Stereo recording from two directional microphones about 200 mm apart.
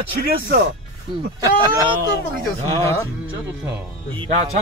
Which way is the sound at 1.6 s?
25° right (ahead or behind).